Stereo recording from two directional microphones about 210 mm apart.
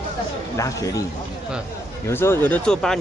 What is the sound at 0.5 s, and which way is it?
Speech, 15° left (ahead or behind).